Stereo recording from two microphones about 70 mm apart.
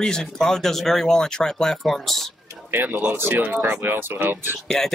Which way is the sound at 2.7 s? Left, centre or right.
Right.